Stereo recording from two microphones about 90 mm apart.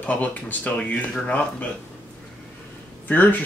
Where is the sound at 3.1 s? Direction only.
20° left (ahead or behind).